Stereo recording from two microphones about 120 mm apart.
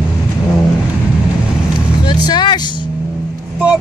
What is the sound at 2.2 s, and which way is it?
Vehicle, 40° left (ahead or behind).